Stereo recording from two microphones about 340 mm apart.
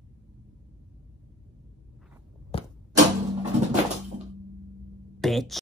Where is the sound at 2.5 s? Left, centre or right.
Centre.